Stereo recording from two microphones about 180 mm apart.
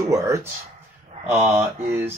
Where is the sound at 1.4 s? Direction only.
10° right (ahead or behind).